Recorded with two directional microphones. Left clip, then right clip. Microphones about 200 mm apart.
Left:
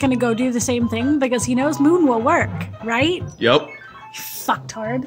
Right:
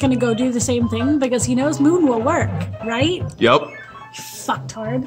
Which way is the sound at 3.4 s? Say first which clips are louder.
Right 2 dB; 30° right (ahead or behind).